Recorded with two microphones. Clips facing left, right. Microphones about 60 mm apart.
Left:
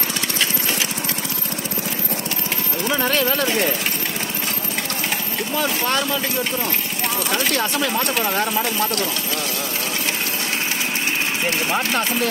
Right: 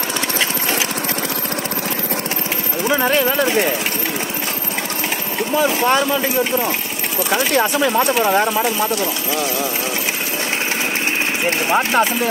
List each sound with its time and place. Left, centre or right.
2.9 s speech: centre
5.6 s speech: centre
11.4 s speech: centre